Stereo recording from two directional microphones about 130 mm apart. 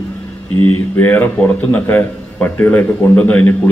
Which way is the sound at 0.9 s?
15° left (ahead or behind).